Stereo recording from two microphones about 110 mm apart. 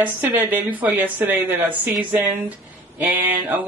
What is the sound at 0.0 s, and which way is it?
Speech, 15° right (ahead or behind).